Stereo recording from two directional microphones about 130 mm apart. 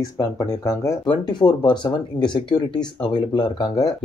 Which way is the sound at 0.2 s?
25° left (ahead or behind).